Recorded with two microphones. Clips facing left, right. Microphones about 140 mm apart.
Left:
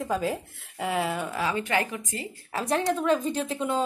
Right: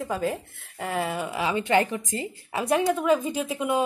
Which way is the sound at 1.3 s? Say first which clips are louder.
Right 7 dB; 20° right (ahead or behind).